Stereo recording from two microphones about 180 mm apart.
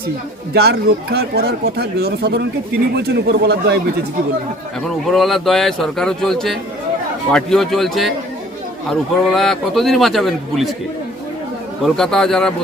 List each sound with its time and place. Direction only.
0.5 s speech: 65° right (ahead or behind)
4.8 s speech: centre (ahead or behind)
9.2 s speech: centre (ahead or behind)
11.8 s speech: centre (ahead or behind)